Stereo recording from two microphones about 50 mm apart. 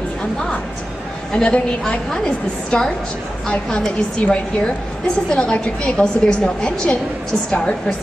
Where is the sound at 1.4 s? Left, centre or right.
Left.